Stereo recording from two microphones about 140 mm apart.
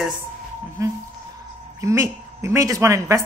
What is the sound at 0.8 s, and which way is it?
A woman's voice, 20° right (ahead or behind).